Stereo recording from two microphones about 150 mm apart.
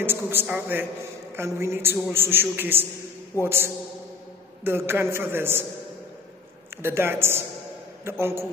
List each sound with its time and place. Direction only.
0.0 s a man's voice: 15° right (ahead or behind)
6.8 s a man's voice: 15° right (ahead or behind)